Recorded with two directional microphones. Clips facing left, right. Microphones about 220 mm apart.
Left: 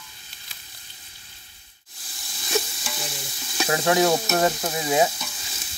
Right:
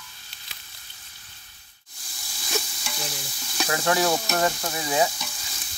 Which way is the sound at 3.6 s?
25° left (ahead or behind).